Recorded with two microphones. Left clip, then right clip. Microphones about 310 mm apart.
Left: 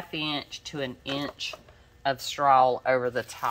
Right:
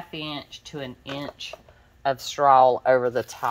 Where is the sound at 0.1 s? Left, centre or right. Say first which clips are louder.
Left 4 dB; centre.